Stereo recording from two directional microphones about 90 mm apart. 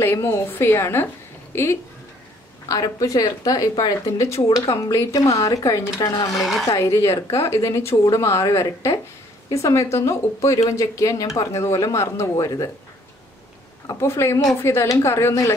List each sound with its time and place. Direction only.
0.0 s a woman's voice: 30° left (ahead or behind)
2.7 s speech: 40° left (ahead or behind)
13.8 s speech: 30° left (ahead or behind)